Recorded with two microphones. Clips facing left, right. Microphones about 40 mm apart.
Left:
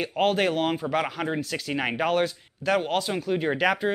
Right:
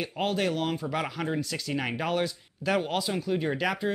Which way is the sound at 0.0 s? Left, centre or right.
Left.